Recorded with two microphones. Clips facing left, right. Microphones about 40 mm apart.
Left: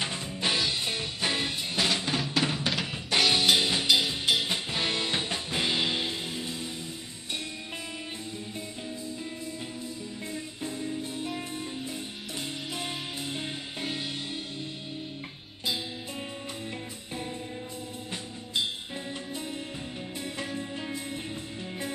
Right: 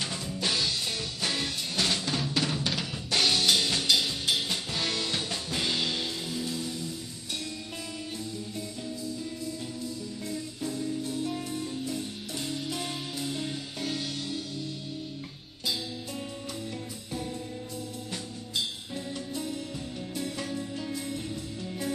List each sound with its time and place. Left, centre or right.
0.0 s music: left
2.5 s drum: centre
3.2 s music: left
10.3 s music: left
18.1 s music: left
20.2 s music: left